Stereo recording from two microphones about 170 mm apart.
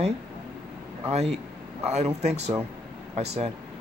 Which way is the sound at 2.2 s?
40° right (ahead or behind).